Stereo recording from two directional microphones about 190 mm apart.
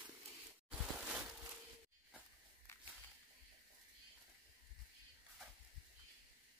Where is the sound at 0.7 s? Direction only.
5° right (ahead or behind).